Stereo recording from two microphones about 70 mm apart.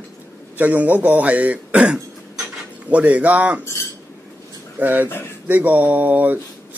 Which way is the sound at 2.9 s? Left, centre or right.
Centre.